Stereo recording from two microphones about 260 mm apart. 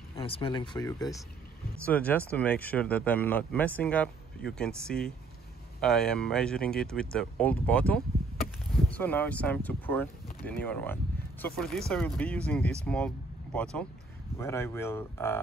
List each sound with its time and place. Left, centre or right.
0.2 s speech: centre